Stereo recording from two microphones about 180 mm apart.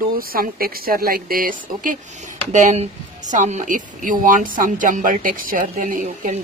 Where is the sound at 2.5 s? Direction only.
40° right (ahead or behind).